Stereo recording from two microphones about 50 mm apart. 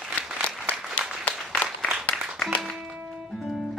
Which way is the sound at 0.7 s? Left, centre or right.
Left.